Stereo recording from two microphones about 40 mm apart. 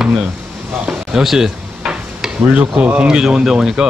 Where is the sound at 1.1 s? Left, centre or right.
Centre.